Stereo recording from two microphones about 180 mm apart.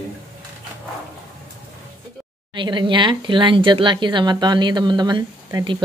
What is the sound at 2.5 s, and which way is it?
Speech, 25° right (ahead or behind).